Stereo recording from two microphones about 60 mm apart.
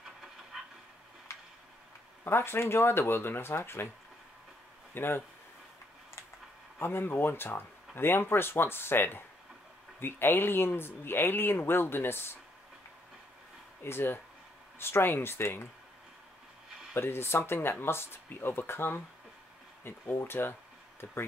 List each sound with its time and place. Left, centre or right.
0.0 s train: centre
2.2 s speech: left
4.9 s speech: left
6.8 s speech: left
13.8 s speech: left
16.9 s speech: left